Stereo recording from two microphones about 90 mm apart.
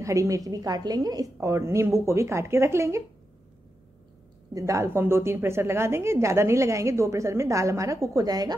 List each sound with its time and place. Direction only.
0.0 s a woman's voice: 35° right (ahead or behind)
4.6 s a woman's voice: 35° right (ahead or behind)